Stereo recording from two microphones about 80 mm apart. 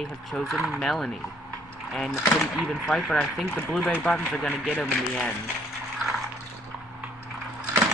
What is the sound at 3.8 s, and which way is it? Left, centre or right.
Speech, centre.